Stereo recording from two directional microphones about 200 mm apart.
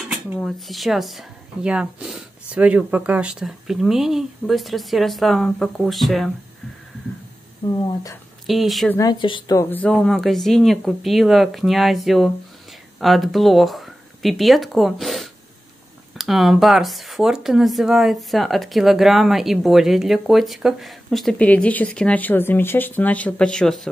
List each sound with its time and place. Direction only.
0.1 s speech: centre (ahead or behind)
8.5 s speech: centre (ahead or behind)
8.9 s speech: 20° left (ahead or behind); by 23.9 s 5° left (ahead or behind)